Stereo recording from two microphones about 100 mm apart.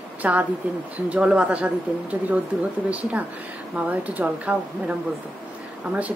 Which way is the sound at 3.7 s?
15° right (ahead or behind).